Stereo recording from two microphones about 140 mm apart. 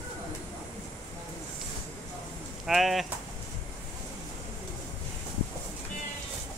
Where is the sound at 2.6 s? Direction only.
Centre (ahead or behind).